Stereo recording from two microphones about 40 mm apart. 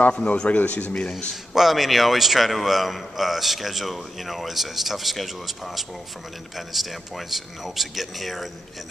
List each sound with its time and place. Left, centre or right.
0.1 s a man's voice: left
0.8 s speech: left
1.5 s a man's voice: centre